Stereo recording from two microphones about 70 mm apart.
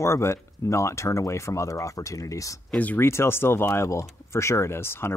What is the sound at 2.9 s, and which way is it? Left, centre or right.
Speech, left.